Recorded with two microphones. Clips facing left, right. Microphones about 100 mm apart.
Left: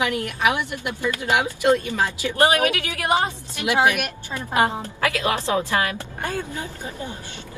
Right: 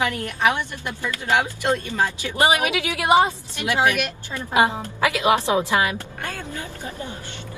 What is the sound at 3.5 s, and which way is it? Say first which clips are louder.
Speech: left 1 dB; 20° left (ahead or behind).